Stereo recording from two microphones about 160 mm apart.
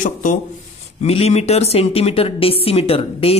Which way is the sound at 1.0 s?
40° left (ahead or behind).